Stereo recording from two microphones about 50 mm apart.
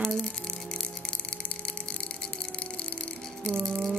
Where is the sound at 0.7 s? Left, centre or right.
Centre.